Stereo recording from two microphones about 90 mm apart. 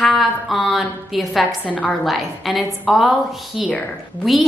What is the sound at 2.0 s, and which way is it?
A woman's voice, centre (ahead or behind).